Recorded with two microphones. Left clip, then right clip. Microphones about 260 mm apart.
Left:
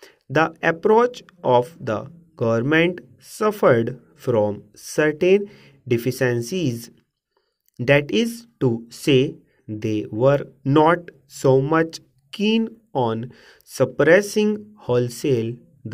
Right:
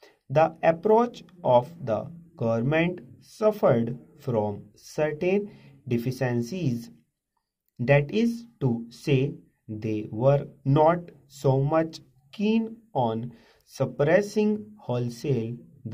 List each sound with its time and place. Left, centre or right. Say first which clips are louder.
0.0 s speech: left 2 dB; left